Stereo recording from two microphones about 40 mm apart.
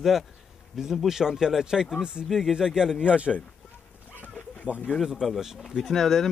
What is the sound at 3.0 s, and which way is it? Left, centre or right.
Speech, right.